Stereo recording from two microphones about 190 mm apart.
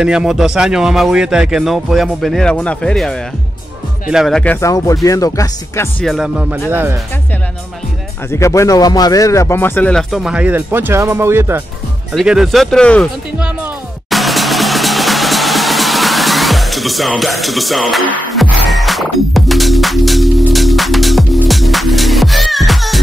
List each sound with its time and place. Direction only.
0.0 s speech: 5° right (ahead or behind); by 6.0 s 15° left (ahead or behind)
6.0 s speech: 5° right (ahead or behind)
8.3 s speech: 15° left (ahead or behind); by 11.6 s 15° right (ahead or behind)
12.1 s speech: centre (ahead or behind)
14.1 s music: centre (ahead or behind)